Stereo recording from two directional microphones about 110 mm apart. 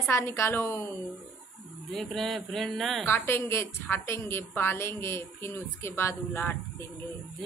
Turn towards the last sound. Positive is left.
turn(degrees=20)  # may be behind; listen again after turning